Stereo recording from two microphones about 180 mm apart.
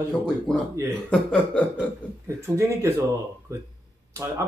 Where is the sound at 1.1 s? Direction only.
5° left (ahead or behind).